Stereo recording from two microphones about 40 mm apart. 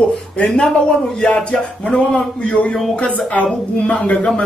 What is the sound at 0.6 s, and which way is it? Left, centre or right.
Speech, left.